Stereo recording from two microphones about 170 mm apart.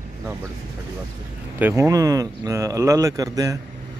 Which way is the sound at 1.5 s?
15° right (ahead or behind).